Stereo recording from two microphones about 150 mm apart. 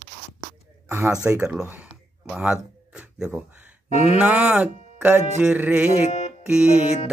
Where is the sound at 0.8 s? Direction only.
20° right (ahead or behind).